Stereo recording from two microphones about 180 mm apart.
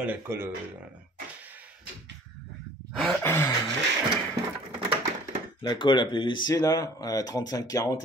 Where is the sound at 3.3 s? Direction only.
15° left (ahead or behind).